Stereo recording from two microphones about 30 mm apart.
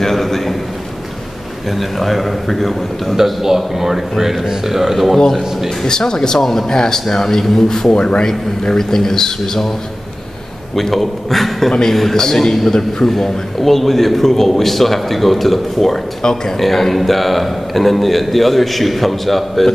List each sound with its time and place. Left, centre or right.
0.0 s a sound: centre
1.8 s a man's voice: centre
3.4 s a man's voice: centre
5.9 s speech: left
10.8 s a man's voice: centre
16.2 s speech: left
16.5 s a man's voice: centre